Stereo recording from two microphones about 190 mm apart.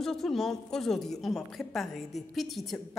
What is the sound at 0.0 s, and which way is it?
A woman's voice, centre (ahead or behind).